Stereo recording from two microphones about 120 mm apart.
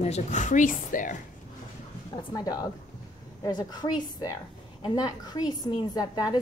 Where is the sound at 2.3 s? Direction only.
30° left (ahead or behind).